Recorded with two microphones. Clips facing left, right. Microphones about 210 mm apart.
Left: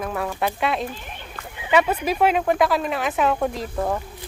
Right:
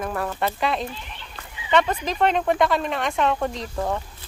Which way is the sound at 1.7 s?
5° left (ahead or behind).